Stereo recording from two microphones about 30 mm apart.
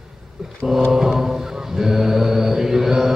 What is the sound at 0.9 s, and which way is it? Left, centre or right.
Mantra, centre.